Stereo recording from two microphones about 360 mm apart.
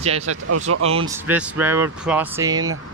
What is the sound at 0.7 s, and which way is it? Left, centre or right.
Speech, right.